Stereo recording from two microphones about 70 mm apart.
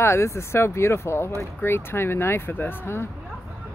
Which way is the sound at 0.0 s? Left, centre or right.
Left.